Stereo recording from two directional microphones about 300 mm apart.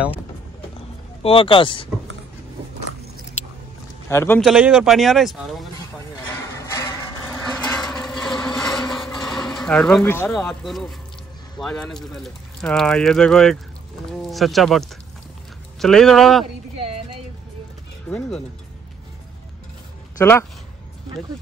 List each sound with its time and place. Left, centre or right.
1.2 s speech: centre
4.1 s speech: centre
6.5 s a sound: centre
8.5 s mechanisms: centre
11.6 s speech: centre
16.7 s a sound: centre
20.2 s speech: centre